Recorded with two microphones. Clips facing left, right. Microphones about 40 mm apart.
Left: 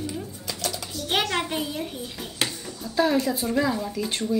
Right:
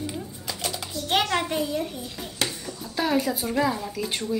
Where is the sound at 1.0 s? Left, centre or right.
Centre.